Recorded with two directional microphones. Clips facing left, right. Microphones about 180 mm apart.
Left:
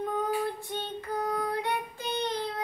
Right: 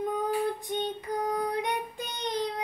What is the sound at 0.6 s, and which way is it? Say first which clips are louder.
Child singing: right 4 dB; 15° right (ahead or behind).